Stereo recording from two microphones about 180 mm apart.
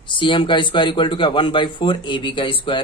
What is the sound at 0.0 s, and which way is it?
A man's voice, 25° left (ahead or behind).